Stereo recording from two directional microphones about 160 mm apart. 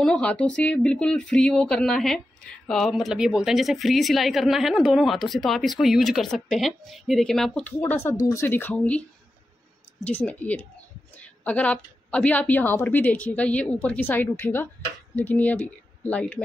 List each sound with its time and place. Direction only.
0.0 s speech: 5° left (ahead or behind)
7.9 s a woman's voice: 15° left (ahead or behind)
10.0 s a woman's voice: 10° left (ahead or behind)